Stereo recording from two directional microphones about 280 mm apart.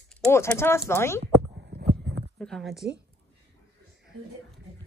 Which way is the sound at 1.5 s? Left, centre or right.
Right.